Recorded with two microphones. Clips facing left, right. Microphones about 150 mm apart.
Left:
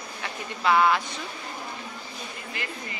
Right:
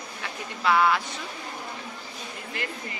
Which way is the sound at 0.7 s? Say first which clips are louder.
Left 1 dB; centre (ahead or behind).